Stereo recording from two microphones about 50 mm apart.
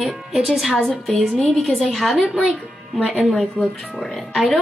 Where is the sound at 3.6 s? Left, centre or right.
Left.